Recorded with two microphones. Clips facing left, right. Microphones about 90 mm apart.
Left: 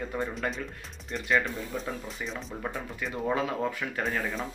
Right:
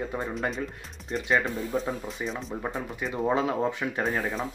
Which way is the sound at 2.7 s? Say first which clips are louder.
Right 3 dB; 30° right (ahead or behind).